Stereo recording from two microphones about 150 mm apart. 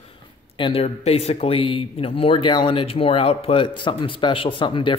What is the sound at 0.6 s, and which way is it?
A man's voice, 35° left (ahead or behind).